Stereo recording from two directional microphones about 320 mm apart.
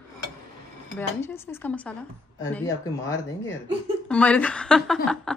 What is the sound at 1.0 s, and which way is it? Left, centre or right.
Dishes, centre.